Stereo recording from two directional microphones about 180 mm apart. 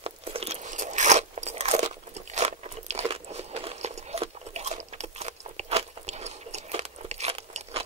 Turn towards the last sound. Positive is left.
turn(degrees=-35)  # may be behind; listen again after turning